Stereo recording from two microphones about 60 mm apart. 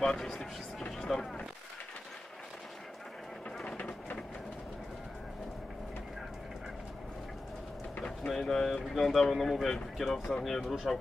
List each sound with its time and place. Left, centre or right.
0.0 s speech: centre
3.6 s train: left
7.9 s vehicle: left
8.3 s speech: centre